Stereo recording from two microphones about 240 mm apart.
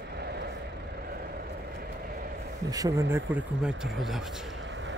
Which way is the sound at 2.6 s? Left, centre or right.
Centre.